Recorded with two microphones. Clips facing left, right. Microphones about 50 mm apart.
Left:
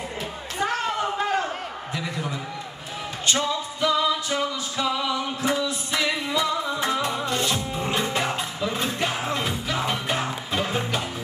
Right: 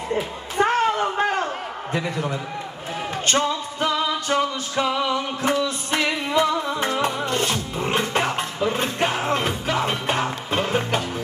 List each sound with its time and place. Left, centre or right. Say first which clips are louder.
0.1 s a sound: right 6 dB; right
3.3 s music: right 2 dB; right
5.4 s music: right 3 dB; right